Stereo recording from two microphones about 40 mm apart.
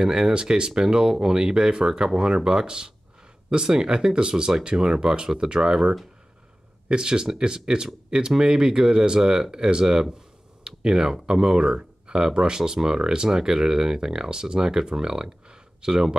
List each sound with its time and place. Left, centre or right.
0.0 s speech: right
10.1 s a sound: centre
11.3 s speech: centre